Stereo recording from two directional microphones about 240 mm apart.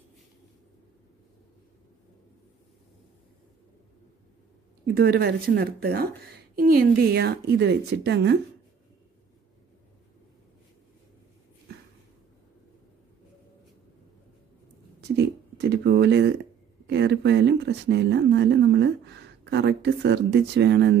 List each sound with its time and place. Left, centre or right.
4.9 s a woman's voice: right
15.0 s a sound: right
16.8 s speech: right